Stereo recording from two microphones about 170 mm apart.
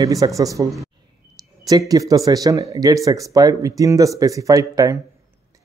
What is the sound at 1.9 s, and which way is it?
Speech, 20° right (ahead or behind).